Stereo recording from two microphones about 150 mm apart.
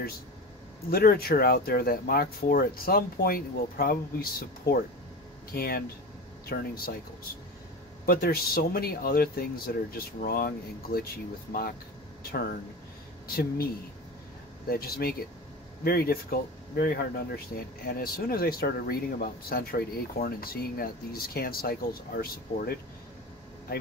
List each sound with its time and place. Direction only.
0.8 s speech: 90° left
8.0 s speech: 85° left
12.2 s speech: 90° left
14.7 s speech: 90° left